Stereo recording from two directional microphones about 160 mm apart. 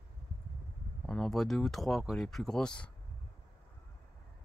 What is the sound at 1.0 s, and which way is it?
Speech, 5° left (ahead or behind).